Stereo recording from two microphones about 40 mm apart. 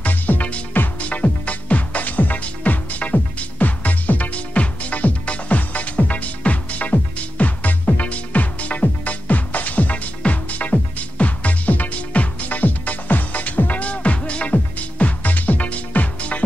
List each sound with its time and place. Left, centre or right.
0.0 s music: left
0.9 s music: left